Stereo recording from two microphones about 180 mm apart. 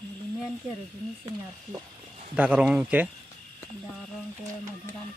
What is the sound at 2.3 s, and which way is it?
Speech, 10° right (ahead or behind).